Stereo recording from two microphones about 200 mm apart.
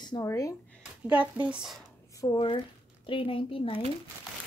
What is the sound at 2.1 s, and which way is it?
A woman's voice, 20° left (ahead or behind).